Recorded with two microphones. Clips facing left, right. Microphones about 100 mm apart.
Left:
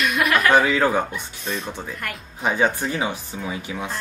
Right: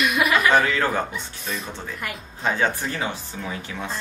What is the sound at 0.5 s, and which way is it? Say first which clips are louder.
Speech: left 2 dB; 15° left (ahead or behind).